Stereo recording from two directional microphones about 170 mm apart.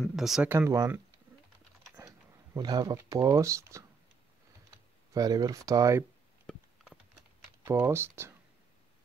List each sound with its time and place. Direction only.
0.1 s speech: centre (ahead or behind)
2.0 s speech: 25° right (ahead or behind)
5.1 s speech: 20° right (ahead or behind)
6.4 s a sound: 5° left (ahead or behind)
7.6 s speech: 15° right (ahead or behind)